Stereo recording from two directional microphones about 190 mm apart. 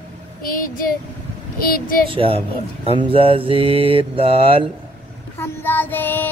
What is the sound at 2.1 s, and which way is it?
Mantra, 30° right (ahead or behind).